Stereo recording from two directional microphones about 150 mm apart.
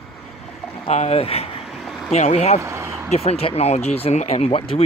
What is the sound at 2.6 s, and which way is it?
Vehicle, 20° right (ahead or behind).